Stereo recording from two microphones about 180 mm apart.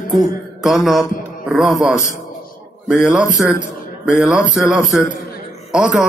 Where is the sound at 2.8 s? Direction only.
Centre (ahead or behind).